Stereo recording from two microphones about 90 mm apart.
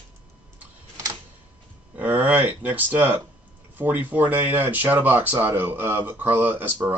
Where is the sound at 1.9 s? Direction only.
20° right (ahead or behind).